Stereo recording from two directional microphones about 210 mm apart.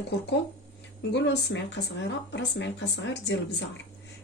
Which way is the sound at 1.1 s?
55° left (ahead or behind).